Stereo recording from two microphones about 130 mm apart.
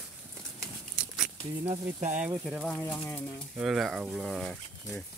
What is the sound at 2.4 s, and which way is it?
Speech, centre (ahead or behind).